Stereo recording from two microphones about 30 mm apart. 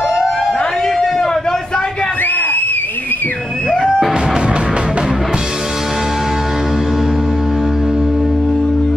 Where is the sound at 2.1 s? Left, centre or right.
Left.